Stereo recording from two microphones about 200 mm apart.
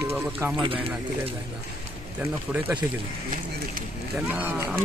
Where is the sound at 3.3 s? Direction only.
45° right (ahead or behind).